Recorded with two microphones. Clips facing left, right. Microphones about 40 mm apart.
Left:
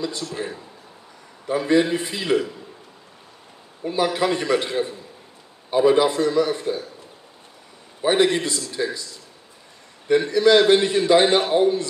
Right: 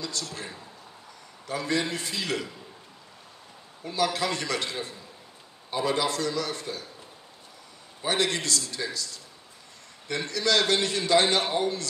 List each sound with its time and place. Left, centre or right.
0.0 s a man's voice: left
3.8 s a man's voice: left
8.0 s a man's voice: left